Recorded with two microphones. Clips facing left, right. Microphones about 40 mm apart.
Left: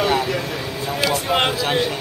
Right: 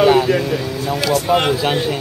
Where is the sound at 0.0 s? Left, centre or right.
Centre.